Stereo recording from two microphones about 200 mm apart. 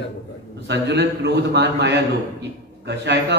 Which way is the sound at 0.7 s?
60° right (ahead or behind).